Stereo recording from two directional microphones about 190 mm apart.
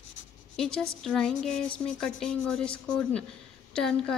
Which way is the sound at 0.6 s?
5° left (ahead or behind).